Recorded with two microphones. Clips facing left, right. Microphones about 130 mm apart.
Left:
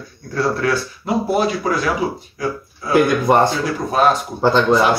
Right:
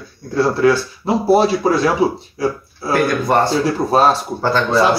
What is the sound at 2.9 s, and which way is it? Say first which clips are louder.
Speech: left 2 dB; 15° left (ahead or behind).